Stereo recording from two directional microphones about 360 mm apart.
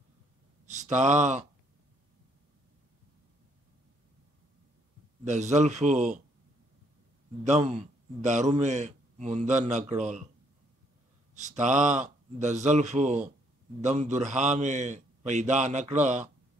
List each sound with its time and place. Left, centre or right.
0.7 s speech: centre
5.2 s a man's voice: centre
7.4 s a man's voice: centre
11.3 s a man's voice: centre